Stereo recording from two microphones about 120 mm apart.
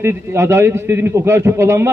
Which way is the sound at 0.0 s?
20° right (ahead or behind).